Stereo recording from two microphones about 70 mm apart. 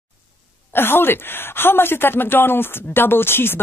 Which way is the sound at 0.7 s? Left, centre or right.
Left.